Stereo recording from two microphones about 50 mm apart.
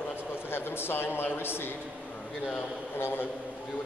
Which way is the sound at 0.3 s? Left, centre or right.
Left.